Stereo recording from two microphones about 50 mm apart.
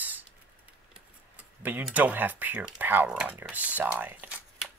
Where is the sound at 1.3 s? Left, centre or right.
Right.